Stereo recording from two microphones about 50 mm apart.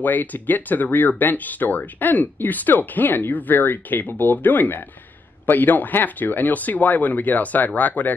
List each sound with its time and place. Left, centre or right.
0.0 s speech: left